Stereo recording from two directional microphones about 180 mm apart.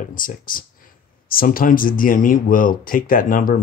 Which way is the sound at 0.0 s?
50° left (ahead or behind).